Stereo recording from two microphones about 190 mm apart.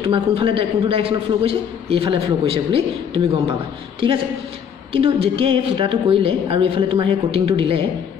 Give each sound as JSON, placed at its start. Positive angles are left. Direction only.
{"t": 0.0, "sound": "a man's voice", "side_deg": -30}
{"t": 4.9, "sound": "a man's voice", "side_deg": -30}